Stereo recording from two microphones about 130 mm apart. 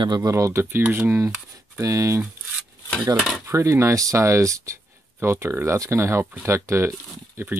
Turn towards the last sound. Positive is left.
turn(degrees=-15)  # may be behind; listen again after turning